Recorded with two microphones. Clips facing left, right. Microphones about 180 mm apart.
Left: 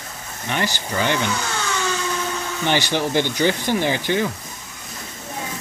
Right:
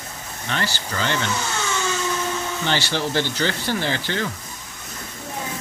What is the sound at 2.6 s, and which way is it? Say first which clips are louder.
Speech: left 4 dB; 15° left (ahead or behind).